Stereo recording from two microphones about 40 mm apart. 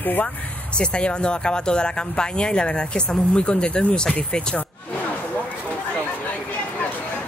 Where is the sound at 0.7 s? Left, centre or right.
Left.